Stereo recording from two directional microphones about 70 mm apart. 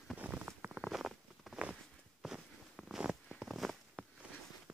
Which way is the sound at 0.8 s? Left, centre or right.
Centre.